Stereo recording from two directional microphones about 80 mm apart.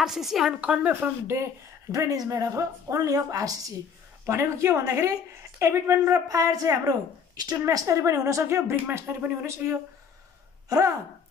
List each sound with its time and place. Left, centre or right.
0.0 s a woman's voice: centre
0.6 s speech: centre
1.2 s speech: right
2.0 s a woman's voice: right
4.3 s a woman's voice: right
10.7 s a woman's voice: right